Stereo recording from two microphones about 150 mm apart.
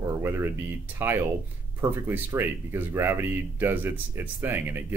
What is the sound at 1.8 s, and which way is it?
Speech, 15° right (ahead or behind).